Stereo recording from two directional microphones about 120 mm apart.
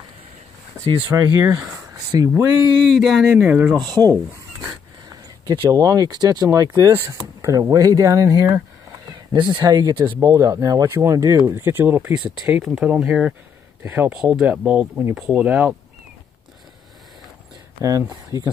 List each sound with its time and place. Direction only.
1.1 s speech: 30° right (ahead or behind)
2.8 s speech: centre (ahead or behind)
3.3 s speech: 15° right (ahead or behind)
3.7 s speech: 35° right (ahead or behind)
5.5 s speech: 30° right (ahead or behind)
9.1 s horse: 40° right (ahead or behind)
9.8 s speech: 35° right (ahead or behind)
10.2 s speech: 25° right (ahead or behind)
18.1 s speech: 30° right (ahead or behind)